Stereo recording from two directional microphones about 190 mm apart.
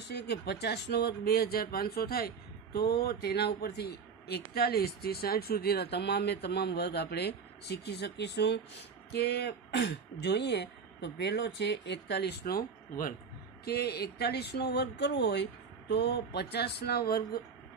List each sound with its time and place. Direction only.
0.1 s speech: 60° left (ahead or behind)